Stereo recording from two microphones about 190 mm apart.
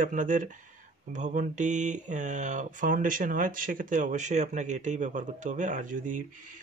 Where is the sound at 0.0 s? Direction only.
45° right (ahead or behind).